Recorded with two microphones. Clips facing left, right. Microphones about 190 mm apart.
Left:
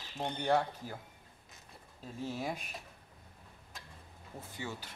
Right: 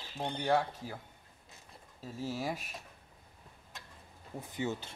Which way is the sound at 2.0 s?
5° right (ahead or behind).